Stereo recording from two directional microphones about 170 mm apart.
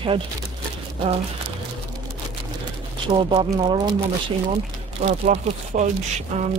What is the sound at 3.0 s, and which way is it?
Speech, 30° right (ahead or behind).